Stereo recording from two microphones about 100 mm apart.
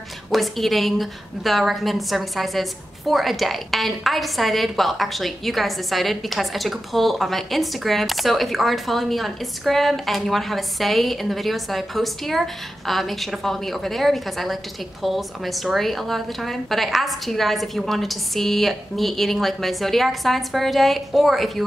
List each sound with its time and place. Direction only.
0.3 s a woman's voice: centre (ahead or behind)